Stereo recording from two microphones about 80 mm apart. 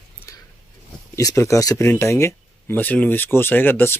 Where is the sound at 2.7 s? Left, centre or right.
Left.